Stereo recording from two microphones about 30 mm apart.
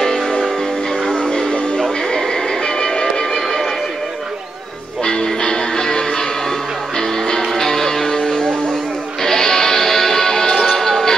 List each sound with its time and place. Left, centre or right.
1.1 s music: left
5.0 s music: left